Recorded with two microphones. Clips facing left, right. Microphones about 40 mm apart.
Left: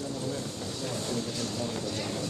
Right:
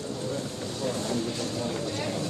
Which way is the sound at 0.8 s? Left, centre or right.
Centre.